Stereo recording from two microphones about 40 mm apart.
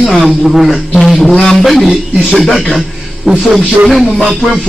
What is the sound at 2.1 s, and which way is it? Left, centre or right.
Speech, centre.